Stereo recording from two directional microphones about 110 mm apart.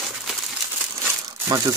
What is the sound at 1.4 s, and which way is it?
Speech, 30° right (ahead or behind).